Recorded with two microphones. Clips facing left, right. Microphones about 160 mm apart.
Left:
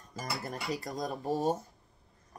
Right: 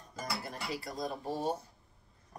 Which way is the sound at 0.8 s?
45° left (ahead or behind).